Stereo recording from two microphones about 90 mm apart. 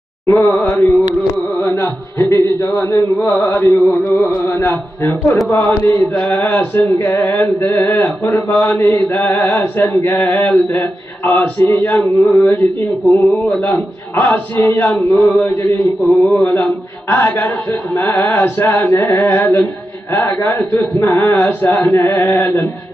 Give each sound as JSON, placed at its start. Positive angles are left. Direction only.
{"t": 0.5, "sound": "a sound", "side_deg": 30}
{"t": 3.3, "sound": "speech", "side_deg": 30}
{"t": 12.4, "sound": "a sound", "side_deg": 35}
{"t": 13.2, "sound": "a man's voice", "side_deg": 0}
{"t": 14.1, "sound": "speech", "side_deg": 20}
{"t": 15.0, "sound": "mantra", "side_deg": 10}
{"t": 16.0, "sound": "a man's voice", "side_deg": 0}
{"t": 17.1, "sound": "speech", "side_deg": 20}